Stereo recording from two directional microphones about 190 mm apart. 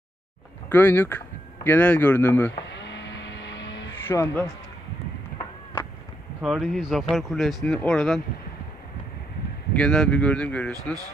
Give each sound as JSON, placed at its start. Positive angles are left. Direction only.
{"t": 0.7, "sound": "speech", "side_deg": 10}
{"t": 2.6, "sound": "vehicle", "side_deg": 65}
{"t": 4.1, "sound": "speech", "side_deg": 10}
{"t": 6.4, "sound": "speech", "side_deg": -5}
{"t": 9.8, "sound": "speech", "side_deg": 5}